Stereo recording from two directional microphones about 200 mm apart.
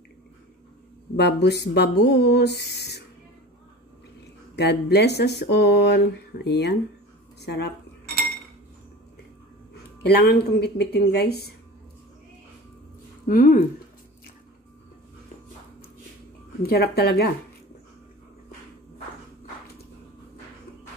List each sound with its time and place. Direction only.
1.1 s speech: 55° left (ahead or behind)
4.6 s speech: 55° left (ahead or behind)
10.0 s speech: 55° left (ahead or behind)
13.3 s speech: 45° left (ahead or behind)
16.6 s speech: 50° left (ahead or behind)